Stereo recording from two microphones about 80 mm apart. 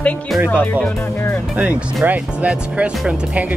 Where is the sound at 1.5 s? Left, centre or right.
Centre.